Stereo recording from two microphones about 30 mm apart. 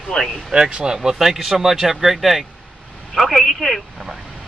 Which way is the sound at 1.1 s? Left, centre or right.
Centre.